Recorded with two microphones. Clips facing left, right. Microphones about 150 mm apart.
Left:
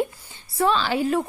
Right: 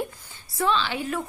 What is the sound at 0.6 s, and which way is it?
Speech, 40° left (ahead or behind).